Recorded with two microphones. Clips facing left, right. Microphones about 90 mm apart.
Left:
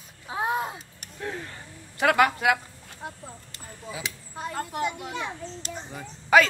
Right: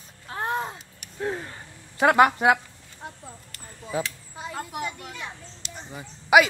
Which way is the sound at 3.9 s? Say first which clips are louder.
Right 8 dB; 45° right (ahead or behind).